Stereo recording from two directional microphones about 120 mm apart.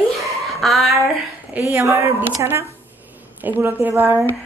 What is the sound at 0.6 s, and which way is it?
Speech, centre (ahead or behind).